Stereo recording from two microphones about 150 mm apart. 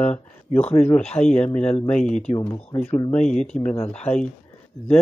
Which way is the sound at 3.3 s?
5° left (ahead or behind).